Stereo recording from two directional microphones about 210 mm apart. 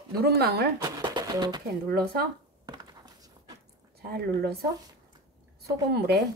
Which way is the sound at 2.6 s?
20° right (ahead or behind).